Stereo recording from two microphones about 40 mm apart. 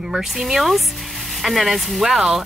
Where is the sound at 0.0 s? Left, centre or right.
Centre.